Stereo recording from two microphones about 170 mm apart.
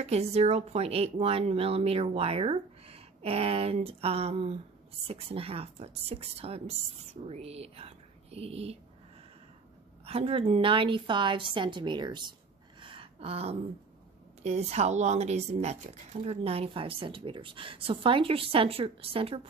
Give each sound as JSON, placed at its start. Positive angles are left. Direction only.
{"t": 0.0, "sound": "a woman's voice", "side_deg": -40}
{"t": 10.0, "sound": "a woman's voice", "side_deg": -35}
{"t": 12.8, "sound": "a sound", "side_deg": -30}
{"t": 14.4, "sound": "a woman's voice", "side_deg": -40}